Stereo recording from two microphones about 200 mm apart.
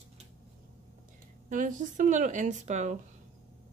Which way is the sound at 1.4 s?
40° right (ahead or behind).